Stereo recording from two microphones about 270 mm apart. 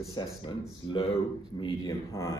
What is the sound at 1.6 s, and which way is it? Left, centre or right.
Speech, centre.